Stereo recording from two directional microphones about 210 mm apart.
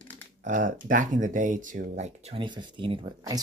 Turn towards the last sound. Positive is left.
turn(degrees=-20)  # may be behind; listen again after turning